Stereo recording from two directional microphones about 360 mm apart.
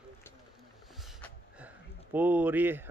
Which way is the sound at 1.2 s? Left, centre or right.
Centre.